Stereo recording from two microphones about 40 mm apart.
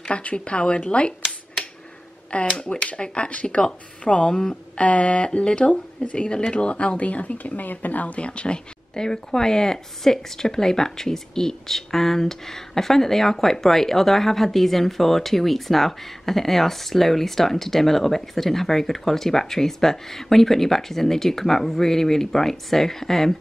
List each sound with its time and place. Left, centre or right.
0.1 s speech: left
2.3 s speech: left
8.3 s speech: left; by 23.3 s centre